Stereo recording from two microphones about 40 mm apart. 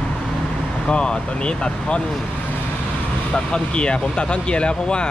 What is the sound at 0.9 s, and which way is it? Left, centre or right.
Speech, left.